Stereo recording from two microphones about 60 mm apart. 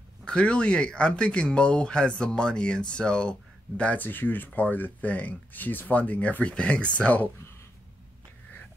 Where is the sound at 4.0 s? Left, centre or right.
Left.